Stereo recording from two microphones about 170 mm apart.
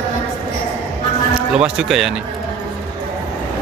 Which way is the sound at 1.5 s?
5° right (ahead or behind).